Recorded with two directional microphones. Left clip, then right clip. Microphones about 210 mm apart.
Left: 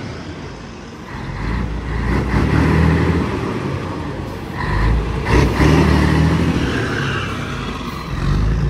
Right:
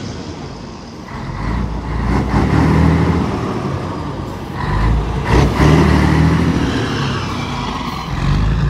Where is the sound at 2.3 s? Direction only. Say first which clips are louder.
Right 2 dB; centre (ahead or behind).